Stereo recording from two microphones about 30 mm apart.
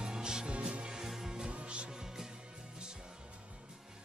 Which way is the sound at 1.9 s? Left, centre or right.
Centre.